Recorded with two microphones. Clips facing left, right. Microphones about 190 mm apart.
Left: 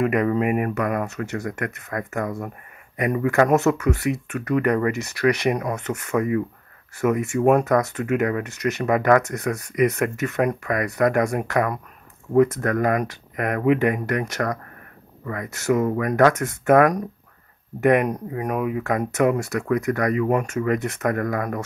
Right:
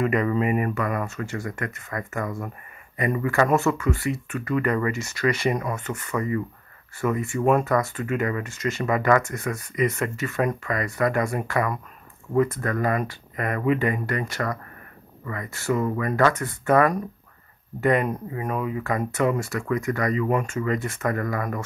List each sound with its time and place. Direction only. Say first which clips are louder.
0.0 s speech: left 2 dB; 60° left (ahead or behind)
12.7 s speech: left 1 dB; 65° left (ahead or behind)